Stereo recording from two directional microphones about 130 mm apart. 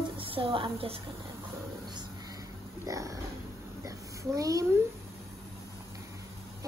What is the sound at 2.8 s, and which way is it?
Speech, 25° right (ahead or behind).